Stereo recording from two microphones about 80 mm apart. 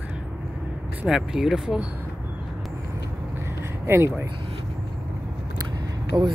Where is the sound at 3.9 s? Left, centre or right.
Right.